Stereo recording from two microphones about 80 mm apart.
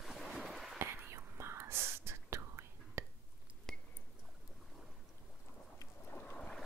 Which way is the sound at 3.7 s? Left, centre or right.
Centre.